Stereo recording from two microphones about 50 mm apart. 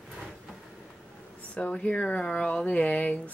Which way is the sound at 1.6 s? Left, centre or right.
Left.